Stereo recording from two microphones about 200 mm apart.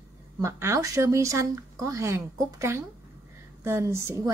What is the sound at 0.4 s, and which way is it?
Speech, 15° right (ahead or behind).